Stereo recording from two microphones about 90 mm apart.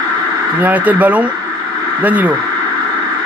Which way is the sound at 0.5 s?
20° right (ahead or behind).